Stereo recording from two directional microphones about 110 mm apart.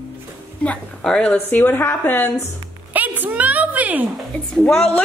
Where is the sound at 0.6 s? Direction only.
10° left (ahead or behind).